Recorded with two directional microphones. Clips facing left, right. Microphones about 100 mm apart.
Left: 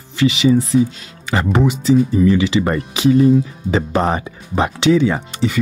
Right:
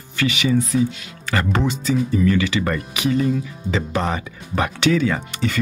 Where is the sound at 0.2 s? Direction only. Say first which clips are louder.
Left 6 dB; 30° left (ahead or behind).